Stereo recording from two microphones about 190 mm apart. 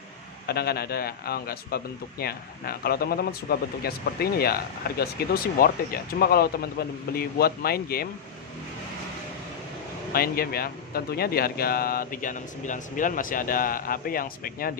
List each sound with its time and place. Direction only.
0.5 s a man's voice: 55° left (ahead or behind)
10.1 s a man's voice: 50° left (ahead or behind)